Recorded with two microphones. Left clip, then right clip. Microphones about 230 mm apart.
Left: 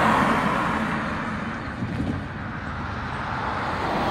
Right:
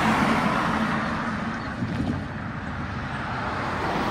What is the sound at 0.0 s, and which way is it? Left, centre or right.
Vehicle, centre.